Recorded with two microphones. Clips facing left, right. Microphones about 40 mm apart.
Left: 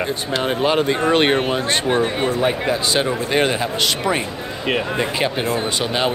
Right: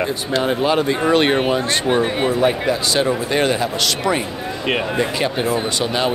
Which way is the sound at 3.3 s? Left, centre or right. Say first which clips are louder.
Right 1 dB; left.